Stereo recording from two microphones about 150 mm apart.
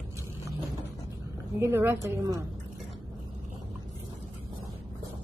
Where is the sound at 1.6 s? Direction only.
15° right (ahead or behind).